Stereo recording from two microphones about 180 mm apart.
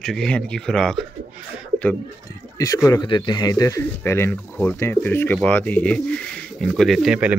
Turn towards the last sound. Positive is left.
turn(degrees=-5)  # may be behind; listen again after turning